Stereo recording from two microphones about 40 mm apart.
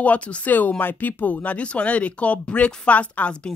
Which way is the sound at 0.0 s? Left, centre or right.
Left.